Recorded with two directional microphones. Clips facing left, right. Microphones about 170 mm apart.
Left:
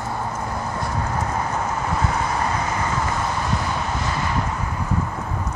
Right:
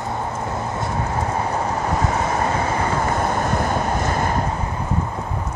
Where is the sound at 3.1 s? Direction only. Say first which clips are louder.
Right 4 dB; 50° right (ahead or behind).